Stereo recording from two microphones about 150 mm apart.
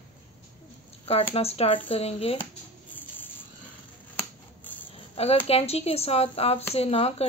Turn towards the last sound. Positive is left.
turn(degrees=40)  # may be behind; listen again after turning